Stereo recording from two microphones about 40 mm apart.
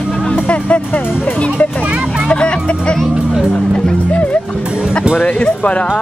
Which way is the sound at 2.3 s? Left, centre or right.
Left.